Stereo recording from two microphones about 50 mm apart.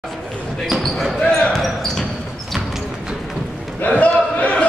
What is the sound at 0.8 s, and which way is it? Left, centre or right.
Speech, centre.